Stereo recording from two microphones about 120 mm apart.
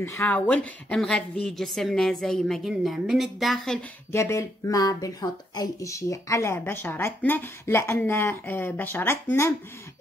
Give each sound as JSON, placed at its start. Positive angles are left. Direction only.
{"t": 0.0, "sound": "a woman's voice", "side_deg": 15}
{"t": 4.1, "sound": "speech", "side_deg": 25}